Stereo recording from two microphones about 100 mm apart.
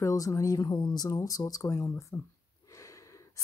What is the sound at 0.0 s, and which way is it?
Speech, 35° left (ahead or behind).